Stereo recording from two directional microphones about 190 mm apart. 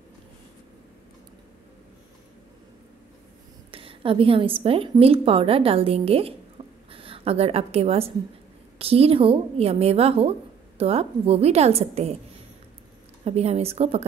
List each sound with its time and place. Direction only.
3.7 s a woman's voice: 30° right (ahead or behind)
13.2 s a woman's voice: 35° right (ahead or behind)